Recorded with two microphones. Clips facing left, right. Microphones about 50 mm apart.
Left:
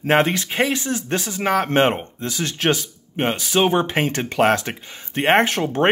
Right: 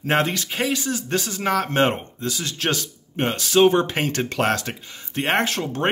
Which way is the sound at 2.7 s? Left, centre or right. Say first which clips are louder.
Left 4 dB; centre.